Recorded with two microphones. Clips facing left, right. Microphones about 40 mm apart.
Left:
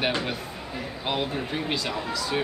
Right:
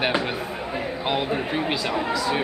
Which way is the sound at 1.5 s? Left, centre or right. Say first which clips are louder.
Right 4 dB; centre.